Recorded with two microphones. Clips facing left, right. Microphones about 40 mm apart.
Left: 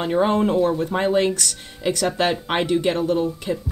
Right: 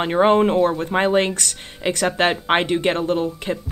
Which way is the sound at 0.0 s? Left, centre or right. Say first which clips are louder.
Right 3 dB; right.